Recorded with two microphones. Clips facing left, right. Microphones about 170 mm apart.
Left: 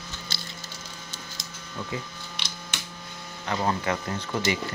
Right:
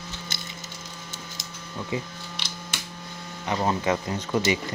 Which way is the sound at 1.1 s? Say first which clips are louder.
Right 2 dB; 20° right (ahead or behind).